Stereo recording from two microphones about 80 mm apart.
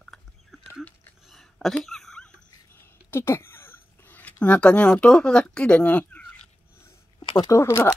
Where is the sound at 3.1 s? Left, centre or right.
Left.